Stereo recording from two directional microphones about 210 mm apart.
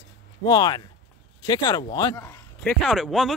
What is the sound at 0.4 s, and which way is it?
Speech, 20° left (ahead or behind).